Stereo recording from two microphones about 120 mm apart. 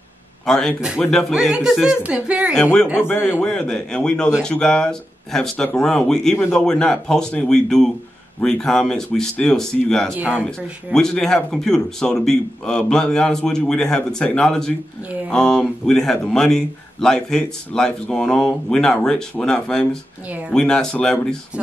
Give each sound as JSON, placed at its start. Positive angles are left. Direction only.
{"t": 0.5, "sound": "a man's voice", "side_deg": 5}
{"t": 0.7, "sound": "a man's voice", "side_deg": -5}
{"t": 2.5, "sound": "a man's voice", "side_deg": 10}
{"t": 3.1, "sound": "a man's voice", "side_deg": 20}
{"t": 3.4, "sound": "a man's voice", "side_deg": 5}
{"t": 10.1, "sound": "speech", "side_deg": -10}
{"t": 10.9, "sound": "a man's voice", "side_deg": 5}
{"t": 20.2, "sound": "speech", "side_deg": -15}
{"t": 20.5, "sound": "a man's voice", "side_deg": 5}